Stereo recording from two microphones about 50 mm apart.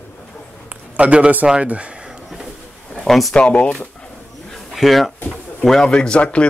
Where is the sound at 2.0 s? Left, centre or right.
Centre.